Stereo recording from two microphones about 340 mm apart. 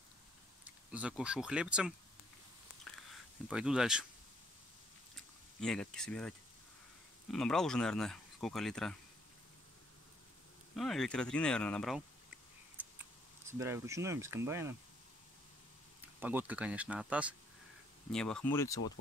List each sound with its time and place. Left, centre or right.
0.9 s speech: centre
3.4 s speech: centre
5.6 s speech: centre
10.8 s speech: centre
13.5 s speech: centre
16.2 s speech: centre